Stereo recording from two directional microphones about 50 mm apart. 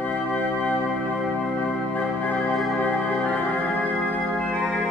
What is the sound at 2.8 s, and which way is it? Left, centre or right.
Organ, left.